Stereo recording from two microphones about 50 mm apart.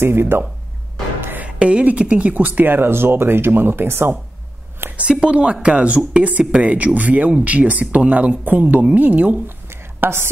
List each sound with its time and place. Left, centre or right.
0.0 s speech: right
1.4 s speech: right
4.9 s speech: centre
9.7 s a sound: right